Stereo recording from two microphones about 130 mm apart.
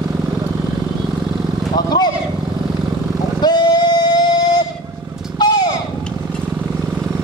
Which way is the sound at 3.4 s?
35° left (ahead or behind).